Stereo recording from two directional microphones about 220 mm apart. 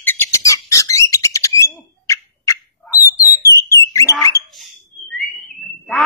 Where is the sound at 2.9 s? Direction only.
10° right (ahead or behind).